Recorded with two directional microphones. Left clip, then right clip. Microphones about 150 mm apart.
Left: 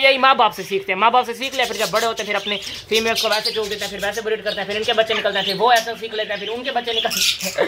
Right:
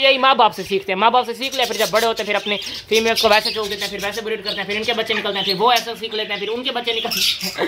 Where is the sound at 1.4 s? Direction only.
5° right (ahead or behind).